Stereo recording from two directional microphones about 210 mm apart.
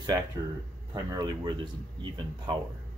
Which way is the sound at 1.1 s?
20° right (ahead or behind).